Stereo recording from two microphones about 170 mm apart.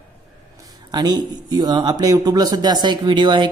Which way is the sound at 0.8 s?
25° right (ahead or behind).